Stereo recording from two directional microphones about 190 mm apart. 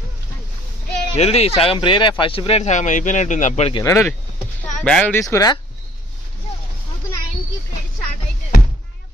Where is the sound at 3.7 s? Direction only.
15° left (ahead or behind).